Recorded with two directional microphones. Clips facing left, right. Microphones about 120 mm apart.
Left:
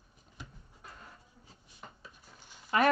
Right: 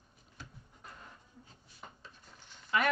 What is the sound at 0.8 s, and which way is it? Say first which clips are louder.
Music: left 1 dB; 5° left (ahead or behind).